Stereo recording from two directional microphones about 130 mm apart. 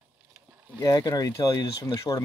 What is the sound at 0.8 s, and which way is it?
Speech, 30° left (ahead or behind).